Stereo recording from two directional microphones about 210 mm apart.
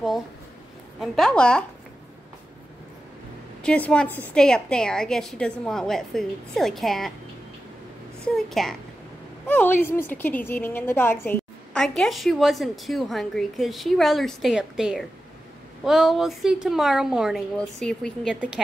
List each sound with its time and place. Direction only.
0.9 s a woman's voice: centre (ahead or behind)
3.6 s a woman's voice: 5° left (ahead or behind)
8.4 s a woman's voice: centre (ahead or behind)